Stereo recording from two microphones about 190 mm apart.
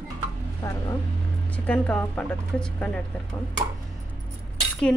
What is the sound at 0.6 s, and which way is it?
Vehicle, 15° left (ahead or behind).